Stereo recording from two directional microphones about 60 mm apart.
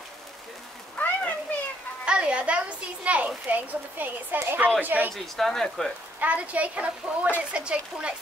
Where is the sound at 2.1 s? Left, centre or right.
Centre.